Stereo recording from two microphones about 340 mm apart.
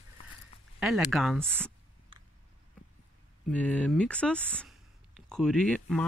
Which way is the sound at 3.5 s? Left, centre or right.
Centre.